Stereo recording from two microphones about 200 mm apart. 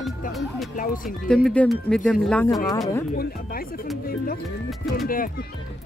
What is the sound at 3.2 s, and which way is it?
Speech, 50° left (ahead or behind).